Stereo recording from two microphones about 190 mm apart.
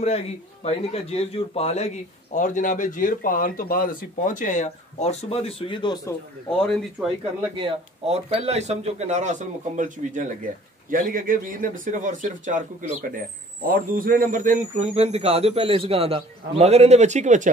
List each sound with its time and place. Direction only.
0.0 s a man's voice: 35° left (ahead or behind)
6.6 s speech: centre (ahead or behind)
7.5 s speech: 30° right (ahead or behind)